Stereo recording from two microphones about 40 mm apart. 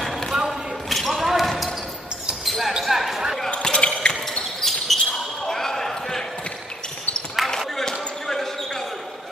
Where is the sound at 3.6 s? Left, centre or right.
Left.